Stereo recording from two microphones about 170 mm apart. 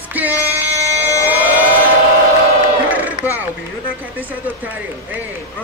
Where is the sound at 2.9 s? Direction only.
10° right (ahead or behind).